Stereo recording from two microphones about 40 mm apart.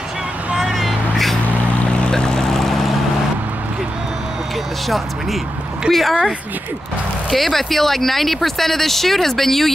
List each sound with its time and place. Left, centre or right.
0.7 s vehicle: centre
1.9 s boat: left; by 2.9 s centre
4.8 s speech: centre
7.2 s speech: centre